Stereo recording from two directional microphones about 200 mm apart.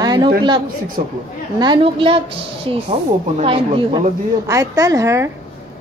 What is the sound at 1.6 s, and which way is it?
A woman's voice, 25° right (ahead or behind).